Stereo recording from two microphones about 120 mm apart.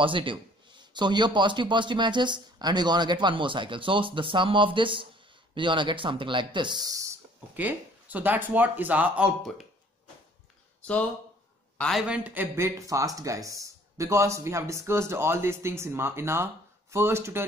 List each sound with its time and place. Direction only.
0.0 s a man's voice: 45° right (ahead or behind); by 7.2 s 30° right (ahead or behind)
7.5 s speech: 15° right (ahead or behind)
10.8 s speech: 10° left (ahead or behind)
12.1 s speech: 15° right (ahead or behind)